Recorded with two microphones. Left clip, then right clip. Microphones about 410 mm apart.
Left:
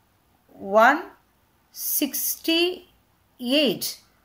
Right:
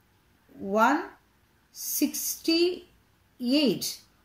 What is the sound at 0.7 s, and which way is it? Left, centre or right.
A woman's voice, left.